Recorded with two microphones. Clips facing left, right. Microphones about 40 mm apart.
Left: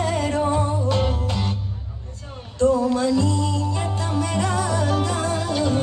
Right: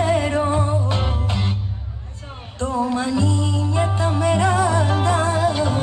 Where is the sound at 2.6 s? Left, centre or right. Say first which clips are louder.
Left 3 dB; right.